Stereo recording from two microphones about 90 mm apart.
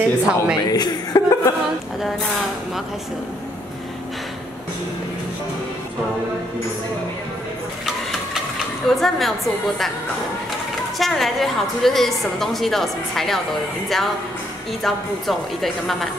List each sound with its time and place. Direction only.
0.0 s a woman's voice: 10° right (ahead or behind)
0.7 s speech: 50° left (ahead or behind)
8.8 s a woman's voice: 5° left (ahead or behind)
11.0 s a woman's voice: centre (ahead or behind)